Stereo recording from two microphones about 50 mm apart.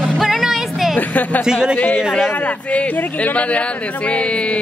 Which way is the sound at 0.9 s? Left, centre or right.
Left.